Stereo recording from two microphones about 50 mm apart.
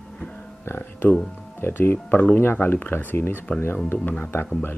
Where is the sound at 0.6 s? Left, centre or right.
Left.